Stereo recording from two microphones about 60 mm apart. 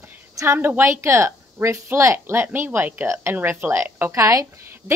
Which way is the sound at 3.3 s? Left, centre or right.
Right.